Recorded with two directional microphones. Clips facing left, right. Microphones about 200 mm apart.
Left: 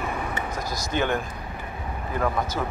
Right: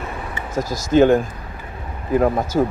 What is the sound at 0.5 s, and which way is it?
A man's voice, 45° right (ahead or behind).